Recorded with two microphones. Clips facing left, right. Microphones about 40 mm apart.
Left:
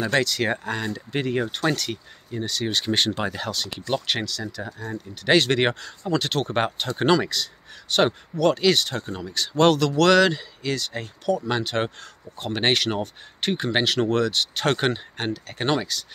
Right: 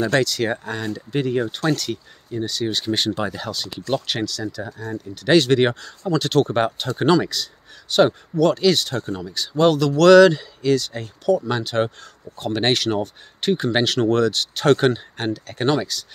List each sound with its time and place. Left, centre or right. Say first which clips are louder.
0.2 s speech: right 2 dB; left
0.7 s speech: right 1 dB; left
2.4 s speech: right 1 dB; left
3.5 s speech: even; left
3.9 s speech: right 2 dB; left
4.6 s speech: right 2 dB; centre
5.1 s speech: right 3 dB; left
5.5 s speech: right 4 dB; left
7.0 s speech: right 3 dB; left
8.4 s speech: right 3 dB; left
9.3 s speech: right 1 dB; left
9.9 s speech: right 7 dB; left
10.8 s speech: right 1 dB; left
13.7 s speech: right 2 dB; centre